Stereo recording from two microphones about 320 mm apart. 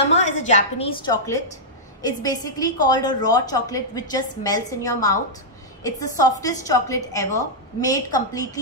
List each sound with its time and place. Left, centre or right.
0.1 s a woman's voice: left